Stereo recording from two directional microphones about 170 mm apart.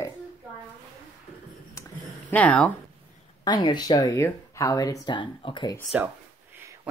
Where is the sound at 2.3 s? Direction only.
5° left (ahead or behind).